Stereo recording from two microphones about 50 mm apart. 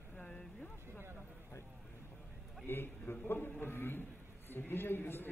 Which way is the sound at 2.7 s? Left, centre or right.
Left.